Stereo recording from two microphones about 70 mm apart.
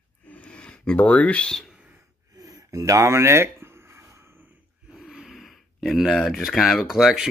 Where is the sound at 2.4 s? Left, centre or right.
Right.